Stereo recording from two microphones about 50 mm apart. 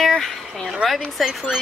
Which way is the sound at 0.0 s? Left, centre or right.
Centre.